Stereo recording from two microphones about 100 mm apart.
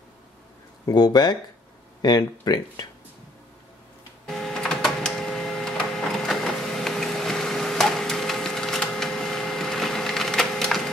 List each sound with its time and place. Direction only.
0.8 s speech: 45° left (ahead or behind)
4.3 s printer: 5° left (ahead or behind)